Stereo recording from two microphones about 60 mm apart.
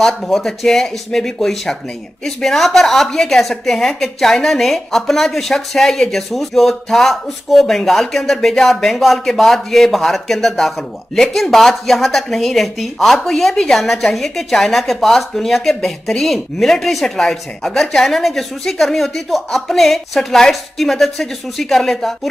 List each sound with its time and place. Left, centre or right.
0.0 s speech: centre